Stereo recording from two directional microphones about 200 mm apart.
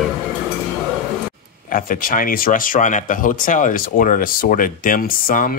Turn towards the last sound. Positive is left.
turn(degrees=45)  # may be behind; listen again after turning